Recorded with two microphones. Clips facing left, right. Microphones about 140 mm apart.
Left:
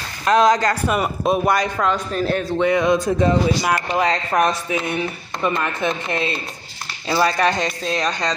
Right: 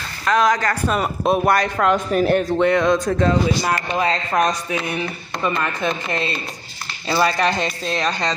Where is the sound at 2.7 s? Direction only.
5° left (ahead or behind).